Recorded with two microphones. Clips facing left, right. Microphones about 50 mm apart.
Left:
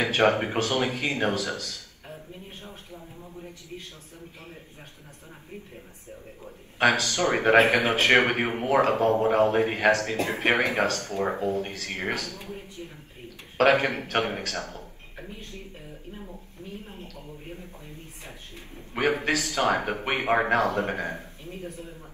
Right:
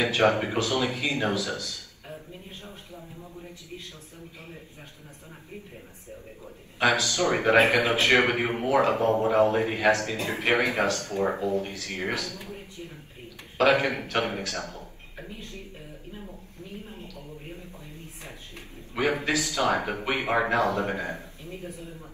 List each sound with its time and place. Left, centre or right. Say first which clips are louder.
0.0 s a man's voice: even; left
3.0 s a sound: even; centre
6.8 s a man's voice: left 1 dB; left
13.6 s a man's voice: left 1 dB; left
16.9 s a man's voice: even; left
18.9 s a man's voice: left 1 dB; left